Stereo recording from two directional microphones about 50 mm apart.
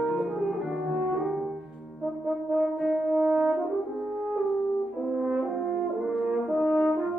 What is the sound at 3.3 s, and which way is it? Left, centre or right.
French horn, centre.